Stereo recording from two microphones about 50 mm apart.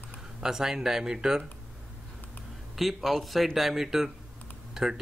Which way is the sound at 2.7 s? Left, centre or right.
Centre.